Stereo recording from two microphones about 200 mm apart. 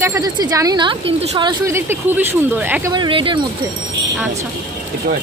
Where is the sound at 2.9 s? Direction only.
25° right (ahead or behind).